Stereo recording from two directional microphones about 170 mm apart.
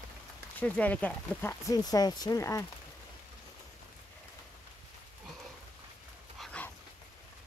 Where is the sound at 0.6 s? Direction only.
10° left (ahead or behind).